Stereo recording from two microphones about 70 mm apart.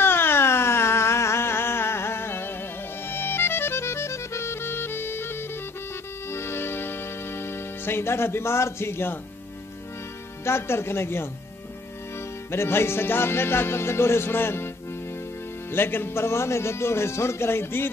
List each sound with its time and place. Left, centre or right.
0.0 s a sound: left
3.1 s music: left
10.4 s music: left
12.4 s music: left
15.7 s music: left